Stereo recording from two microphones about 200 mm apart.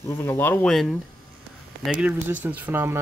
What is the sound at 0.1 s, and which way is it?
Speech, 10° left (ahead or behind).